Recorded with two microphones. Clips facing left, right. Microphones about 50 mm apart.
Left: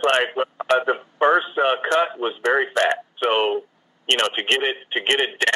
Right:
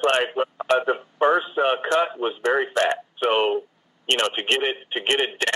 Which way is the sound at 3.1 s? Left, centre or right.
Left.